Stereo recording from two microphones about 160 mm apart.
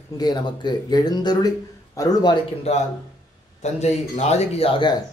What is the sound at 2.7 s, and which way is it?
Speech, 40° left (ahead or behind).